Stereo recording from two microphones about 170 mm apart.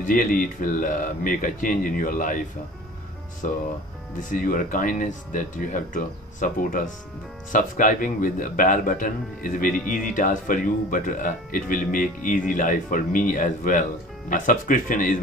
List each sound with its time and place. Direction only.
0.0 s speech: 55° left (ahead or behind)
3.4 s speech: 50° left (ahead or behind)